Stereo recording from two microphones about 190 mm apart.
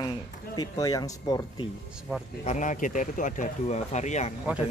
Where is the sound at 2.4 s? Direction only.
40° left (ahead or behind).